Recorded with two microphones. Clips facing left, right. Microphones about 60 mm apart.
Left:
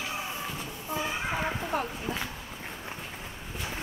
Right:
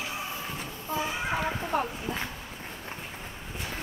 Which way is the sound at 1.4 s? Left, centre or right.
Centre.